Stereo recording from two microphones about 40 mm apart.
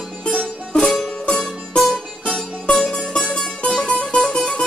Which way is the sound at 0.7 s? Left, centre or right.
Centre.